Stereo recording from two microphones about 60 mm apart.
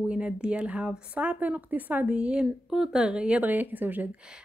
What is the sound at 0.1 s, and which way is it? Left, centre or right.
Speech, centre.